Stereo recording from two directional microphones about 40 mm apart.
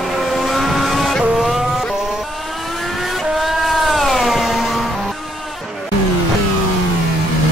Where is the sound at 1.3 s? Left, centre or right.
Centre.